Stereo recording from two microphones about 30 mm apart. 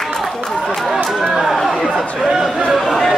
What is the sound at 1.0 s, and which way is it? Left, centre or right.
Chatter, centre.